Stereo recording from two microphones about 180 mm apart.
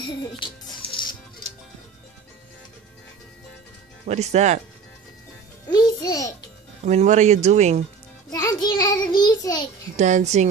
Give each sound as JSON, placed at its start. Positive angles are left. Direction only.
{"t": 0.4, "sound": "music", "side_deg": 25}
{"t": 4.1, "sound": "speech", "side_deg": -40}
{"t": 5.7, "sound": "a child's voice", "side_deg": 20}
{"t": 6.8, "sound": "speech", "side_deg": -40}
{"t": 8.3, "sound": "a child's voice", "side_deg": 20}
{"t": 9.9, "sound": "speech", "side_deg": -40}